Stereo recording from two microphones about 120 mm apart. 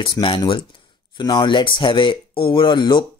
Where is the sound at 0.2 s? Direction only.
25° left (ahead or behind).